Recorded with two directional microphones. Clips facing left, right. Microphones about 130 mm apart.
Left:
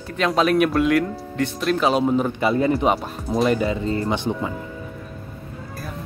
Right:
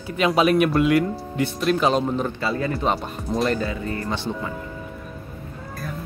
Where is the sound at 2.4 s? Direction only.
20° left (ahead or behind).